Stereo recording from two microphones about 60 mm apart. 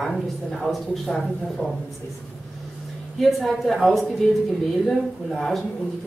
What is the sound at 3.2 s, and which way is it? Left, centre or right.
Speech, centre.